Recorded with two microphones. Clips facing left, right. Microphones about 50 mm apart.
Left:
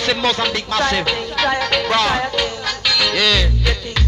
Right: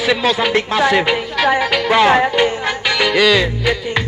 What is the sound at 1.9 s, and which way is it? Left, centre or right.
Music, right.